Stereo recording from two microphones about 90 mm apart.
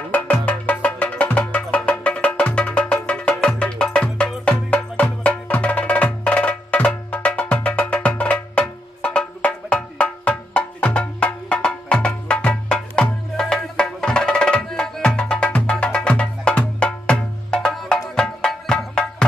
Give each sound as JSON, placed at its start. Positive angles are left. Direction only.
{"t": 0.1, "sound": "music", "side_deg": 15}